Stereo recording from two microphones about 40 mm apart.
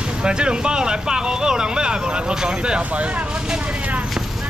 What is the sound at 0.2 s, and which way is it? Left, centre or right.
Speech, right.